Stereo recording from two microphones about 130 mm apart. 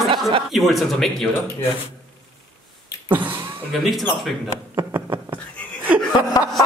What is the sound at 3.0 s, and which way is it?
Beatboxing, 15° right (ahead or behind).